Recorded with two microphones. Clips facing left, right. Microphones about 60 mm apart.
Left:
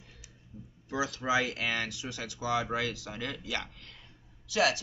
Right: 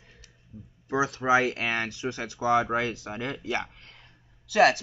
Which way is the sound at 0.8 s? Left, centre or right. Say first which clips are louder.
Right 6 dB; right.